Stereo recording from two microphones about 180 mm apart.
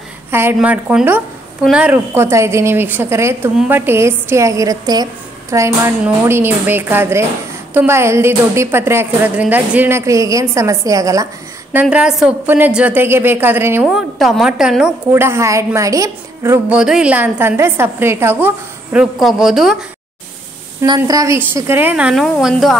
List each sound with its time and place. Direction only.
0.3 s a woman's voice: 10° right (ahead or behind)
11.7 s a woman's voice: 5° right (ahead or behind)
15.2 s a woman's voice: 15° right (ahead or behind)
20.8 s a woman's voice: 20° right (ahead or behind); by 22.8 s centre (ahead or behind)